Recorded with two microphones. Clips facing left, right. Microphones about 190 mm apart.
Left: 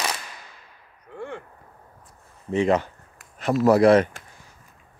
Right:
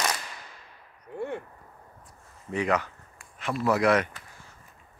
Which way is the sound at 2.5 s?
25° left (ahead or behind).